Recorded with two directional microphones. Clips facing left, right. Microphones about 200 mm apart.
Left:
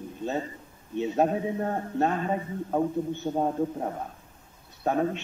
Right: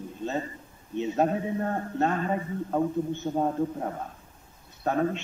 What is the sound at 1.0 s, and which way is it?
A man's voice, 15° left (ahead or behind).